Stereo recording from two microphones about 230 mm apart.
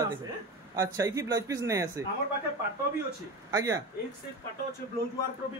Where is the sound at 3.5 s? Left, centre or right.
Centre.